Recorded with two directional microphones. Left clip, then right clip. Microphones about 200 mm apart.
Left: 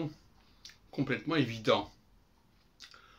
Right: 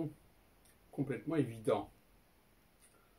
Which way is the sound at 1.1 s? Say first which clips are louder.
Left 5 dB; 10° right (ahead or behind).